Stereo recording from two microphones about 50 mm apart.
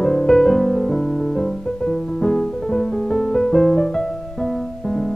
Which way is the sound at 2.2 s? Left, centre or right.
Centre.